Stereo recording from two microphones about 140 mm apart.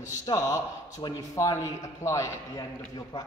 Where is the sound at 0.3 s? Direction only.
30° left (ahead or behind).